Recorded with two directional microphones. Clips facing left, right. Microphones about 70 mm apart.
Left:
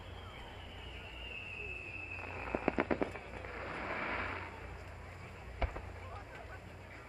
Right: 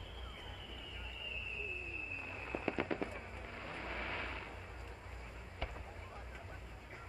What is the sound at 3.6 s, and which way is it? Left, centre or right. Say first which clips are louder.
Vehicle: left 4 dB; left.